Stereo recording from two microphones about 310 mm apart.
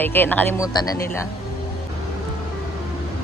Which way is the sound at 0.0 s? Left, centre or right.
Centre.